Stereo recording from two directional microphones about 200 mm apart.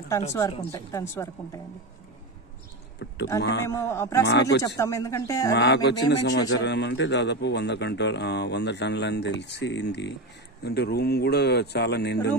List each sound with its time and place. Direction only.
0.7 s speech: 15° left (ahead or behind)
3.0 s a sound: 60° left (ahead or behind)
3.3 s a man's voice: 60° left (ahead or behind)
3.6 s speech: 15° left (ahead or behind)
4.3 s a man's voice: 60° left (ahead or behind)
4.6 s speech: 15° left (ahead or behind)
5.5 s a man's voice: 60° left (ahead or behind)